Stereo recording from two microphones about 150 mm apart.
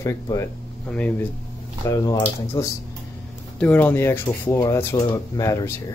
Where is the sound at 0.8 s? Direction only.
10° left (ahead or behind).